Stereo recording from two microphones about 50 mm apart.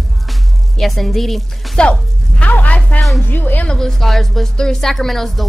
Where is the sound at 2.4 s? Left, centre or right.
Left.